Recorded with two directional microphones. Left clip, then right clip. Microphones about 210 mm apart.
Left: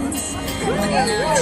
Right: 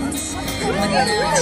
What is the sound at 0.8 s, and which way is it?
Speech, 20° left (ahead or behind).